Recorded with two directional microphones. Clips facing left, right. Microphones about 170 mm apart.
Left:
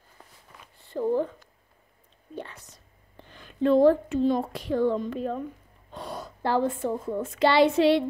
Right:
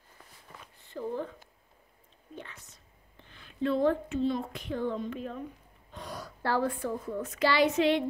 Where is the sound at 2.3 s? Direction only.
35° left (ahead or behind).